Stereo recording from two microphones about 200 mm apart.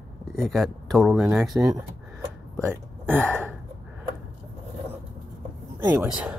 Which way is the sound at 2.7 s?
10° right (ahead or behind).